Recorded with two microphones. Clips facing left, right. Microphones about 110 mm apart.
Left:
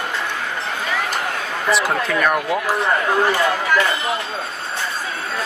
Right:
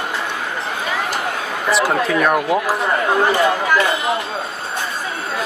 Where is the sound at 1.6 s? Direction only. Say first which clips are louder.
Right 2 dB; centre (ahead or behind).